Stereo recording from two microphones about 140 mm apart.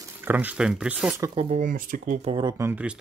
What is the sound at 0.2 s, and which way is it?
Speech, 15° right (ahead or behind).